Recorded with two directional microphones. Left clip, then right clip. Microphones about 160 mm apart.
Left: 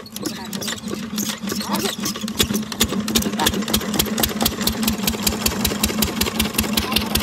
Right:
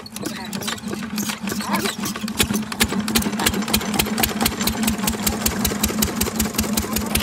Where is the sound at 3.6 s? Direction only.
10° right (ahead or behind).